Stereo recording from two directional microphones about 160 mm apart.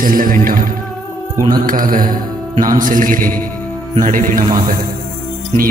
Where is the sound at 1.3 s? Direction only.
25° right (ahead or behind).